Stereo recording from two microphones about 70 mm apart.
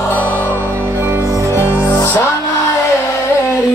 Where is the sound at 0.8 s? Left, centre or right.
Right.